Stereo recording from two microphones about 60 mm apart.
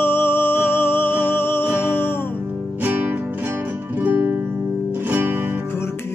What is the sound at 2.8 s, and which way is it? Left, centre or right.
Music, right.